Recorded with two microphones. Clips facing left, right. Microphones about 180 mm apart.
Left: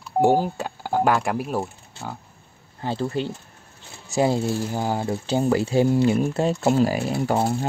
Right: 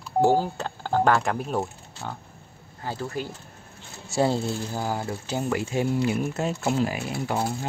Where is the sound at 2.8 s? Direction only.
25° left (ahead or behind).